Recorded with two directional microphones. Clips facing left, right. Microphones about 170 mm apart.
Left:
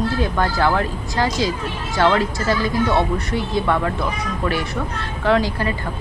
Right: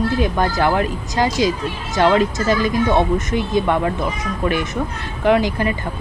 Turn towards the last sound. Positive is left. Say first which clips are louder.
# right 2 dB
turn(degrees=-15)  # may be behind; listen again after turning